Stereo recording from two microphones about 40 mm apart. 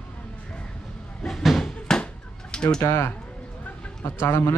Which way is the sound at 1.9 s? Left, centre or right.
Centre.